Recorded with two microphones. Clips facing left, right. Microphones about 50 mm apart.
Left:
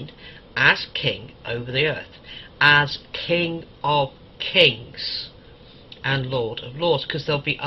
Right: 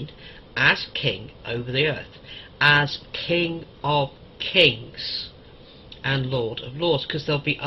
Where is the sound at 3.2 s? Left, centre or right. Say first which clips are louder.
Left 1 dB; centre.